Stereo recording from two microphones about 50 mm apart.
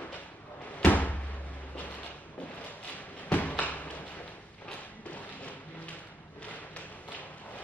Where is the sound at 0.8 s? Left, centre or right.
Left.